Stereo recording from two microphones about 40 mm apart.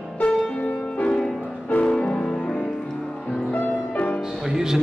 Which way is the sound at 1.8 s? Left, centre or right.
Left.